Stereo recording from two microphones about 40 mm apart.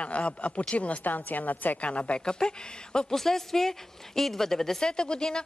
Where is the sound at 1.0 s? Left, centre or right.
Left.